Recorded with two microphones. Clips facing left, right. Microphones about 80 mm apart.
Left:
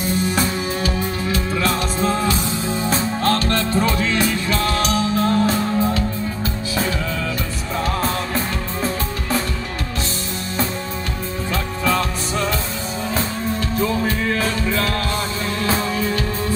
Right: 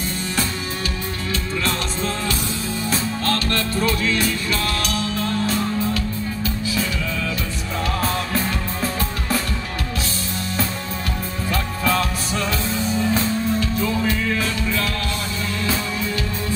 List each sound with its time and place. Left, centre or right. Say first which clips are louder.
0.4 s music: left 4 dB; centre
2.8 s music: left 4 dB; left
13.1 s music: right 2 dB; left